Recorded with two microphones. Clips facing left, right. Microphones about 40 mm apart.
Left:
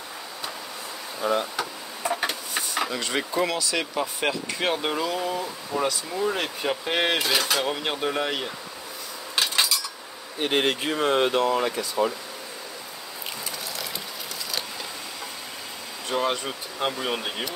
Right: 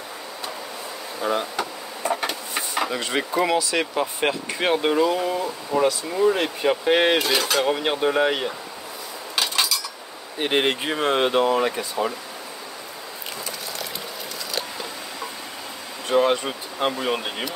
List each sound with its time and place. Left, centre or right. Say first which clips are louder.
1.3 s a sound: even; centre
2.5 s speech: right 2 dB; centre
9.4 s cutlery: right 1 dB; centre
10.4 s speech: right 2 dB; centre
16.1 s speech: right 6 dB; centre